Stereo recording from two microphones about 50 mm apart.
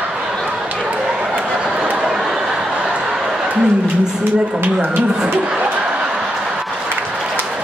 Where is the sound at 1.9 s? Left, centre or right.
Centre.